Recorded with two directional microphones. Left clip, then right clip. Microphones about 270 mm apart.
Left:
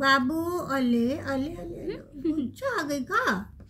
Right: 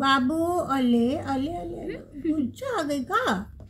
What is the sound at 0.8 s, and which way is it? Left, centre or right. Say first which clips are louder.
Speech: right 3 dB; left.